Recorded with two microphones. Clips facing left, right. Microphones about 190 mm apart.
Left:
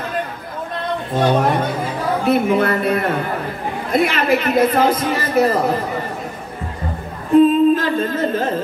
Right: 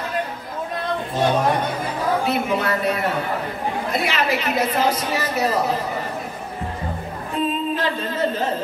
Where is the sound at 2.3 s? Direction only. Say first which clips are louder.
Left 6 dB; 55° left (ahead or behind).